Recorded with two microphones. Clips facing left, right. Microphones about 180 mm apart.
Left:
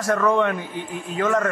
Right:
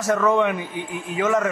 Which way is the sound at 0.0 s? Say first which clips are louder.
Right 1 dB; 5° right (ahead or behind).